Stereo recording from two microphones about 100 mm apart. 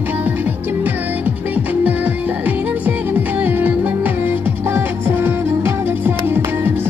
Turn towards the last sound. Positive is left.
turn(degrees=-20)  # may be behind; listen again after turning